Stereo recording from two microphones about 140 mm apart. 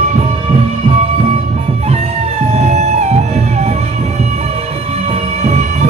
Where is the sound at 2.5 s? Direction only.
50° right (ahead or behind).